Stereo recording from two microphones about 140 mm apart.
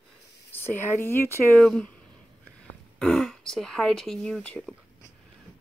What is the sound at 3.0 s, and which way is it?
Speech, 5° left (ahead or behind).